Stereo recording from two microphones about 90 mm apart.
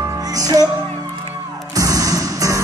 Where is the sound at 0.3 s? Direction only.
45° right (ahead or behind).